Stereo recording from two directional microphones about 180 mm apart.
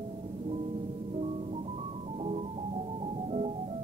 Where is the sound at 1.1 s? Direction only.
35° right (ahead or behind).